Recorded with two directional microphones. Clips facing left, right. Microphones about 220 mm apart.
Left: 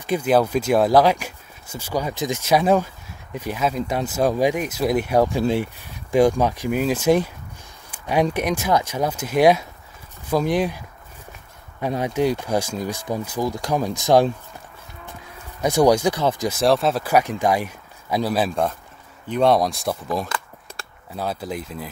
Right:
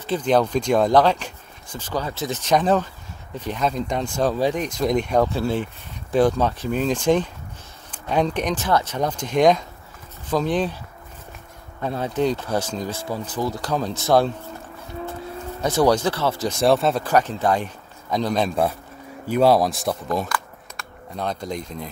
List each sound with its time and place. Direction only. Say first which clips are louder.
0.0 s speech: left 1 dB; 10° left (ahead or behind)
11.8 s speech: left 1 dB; 15° left (ahead or behind)
15.6 s speech: left 2 dB; 10° left (ahead or behind)
16.5 s speech: right 2 dB; centre (ahead or behind)
18.5 s a man's voice: right 1 dB; 5° right (ahead or behind)
20.2 s a sound: right 2 dB; 25° left (ahead or behind)
21.2 s speech: even; 5° left (ahead or behind)